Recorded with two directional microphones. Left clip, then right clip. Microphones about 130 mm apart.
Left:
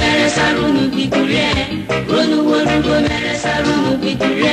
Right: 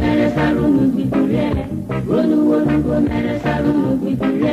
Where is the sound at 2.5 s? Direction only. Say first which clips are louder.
Left 2 dB; 30° right (ahead or behind).